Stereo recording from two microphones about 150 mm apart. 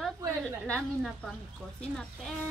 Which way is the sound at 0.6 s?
5° left (ahead or behind).